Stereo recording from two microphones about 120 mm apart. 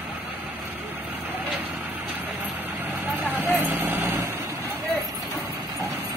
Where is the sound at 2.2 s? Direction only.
15° right (ahead or behind).